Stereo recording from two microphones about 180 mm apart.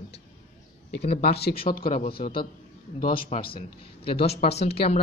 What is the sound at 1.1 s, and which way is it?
Speech, 60° left (ahead or behind).